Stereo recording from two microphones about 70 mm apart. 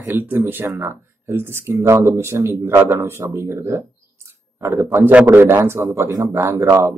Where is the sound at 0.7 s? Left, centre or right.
Right.